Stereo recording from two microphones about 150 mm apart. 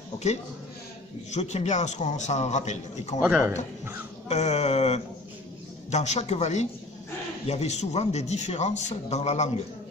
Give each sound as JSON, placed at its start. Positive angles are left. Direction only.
{"t": 1.3, "sound": "speech", "side_deg": 50}
{"t": 3.2, "sound": "a man's voice", "side_deg": -5}
{"t": 4.3, "sound": "speech", "side_deg": 50}